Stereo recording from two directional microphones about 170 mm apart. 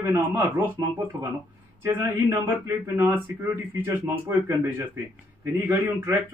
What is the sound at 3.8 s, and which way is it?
Speech, 15° right (ahead or behind).